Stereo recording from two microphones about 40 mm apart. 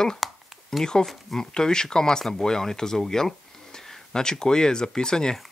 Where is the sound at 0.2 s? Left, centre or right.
Centre.